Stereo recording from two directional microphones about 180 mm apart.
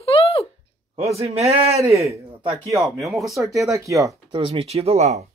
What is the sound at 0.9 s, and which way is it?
Speech, 35° right (ahead or behind).